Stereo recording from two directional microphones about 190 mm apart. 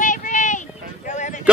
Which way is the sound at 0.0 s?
40° left (ahead or behind).